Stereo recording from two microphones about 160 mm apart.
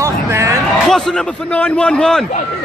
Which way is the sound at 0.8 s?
5° left (ahead or behind).